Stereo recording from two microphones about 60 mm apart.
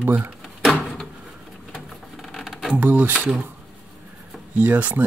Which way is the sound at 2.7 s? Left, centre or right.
Right.